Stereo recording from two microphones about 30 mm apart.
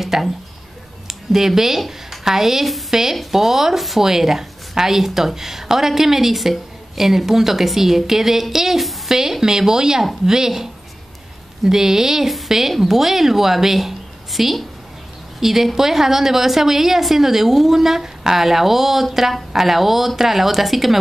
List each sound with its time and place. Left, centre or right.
0.0 s a sound: centre
1.0 s a woman's voice: centre
9.1 s a woman's voice: centre